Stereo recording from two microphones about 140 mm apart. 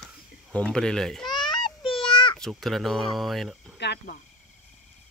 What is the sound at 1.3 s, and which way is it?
Child singing, 35° left (ahead or behind).